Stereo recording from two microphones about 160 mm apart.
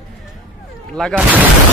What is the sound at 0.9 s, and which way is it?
Speech, centre (ahead or behind).